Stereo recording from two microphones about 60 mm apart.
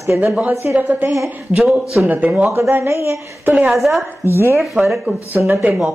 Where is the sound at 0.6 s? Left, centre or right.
Right.